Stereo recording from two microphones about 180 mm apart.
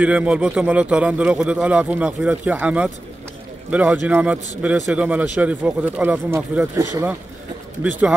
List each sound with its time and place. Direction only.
0.0 s a man's voice: 5° right (ahead or behind)